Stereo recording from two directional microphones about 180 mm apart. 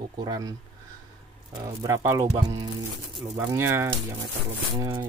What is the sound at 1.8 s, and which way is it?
Speech, 15° right (ahead or behind).